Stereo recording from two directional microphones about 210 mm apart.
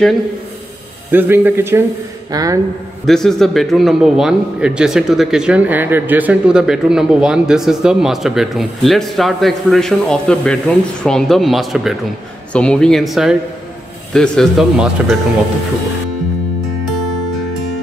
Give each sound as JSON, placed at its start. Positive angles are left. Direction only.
{"t": 1.1, "sound": "speech", "side_deg": -10}
{"t": 3.1, "sound": "a man's voice", "side_deg": 0}